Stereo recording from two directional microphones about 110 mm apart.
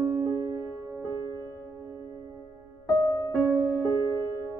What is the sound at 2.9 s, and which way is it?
Music, 35° left (ahead or behind).